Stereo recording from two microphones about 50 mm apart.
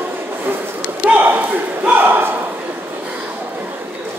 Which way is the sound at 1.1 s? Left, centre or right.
Right.